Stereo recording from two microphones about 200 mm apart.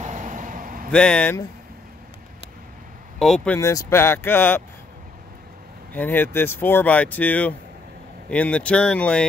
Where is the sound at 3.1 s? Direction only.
5° left (ahead or behind).